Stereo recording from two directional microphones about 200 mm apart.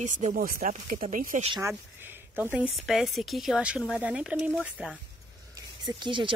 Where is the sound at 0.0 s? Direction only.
40° right (ahead or behind).